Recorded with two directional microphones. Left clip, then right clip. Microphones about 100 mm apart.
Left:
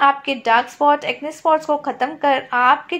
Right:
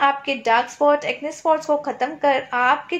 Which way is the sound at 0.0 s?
30° left (ahead or behind).